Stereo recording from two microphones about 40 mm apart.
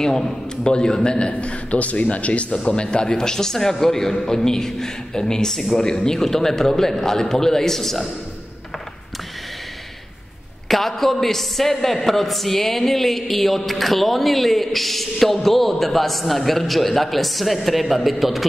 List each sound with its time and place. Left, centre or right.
0.0 s a man's voice: centre; by 2.4 s left
2.5 s a man's voice: left; by 8.1 s centre
10.7 s speech: centre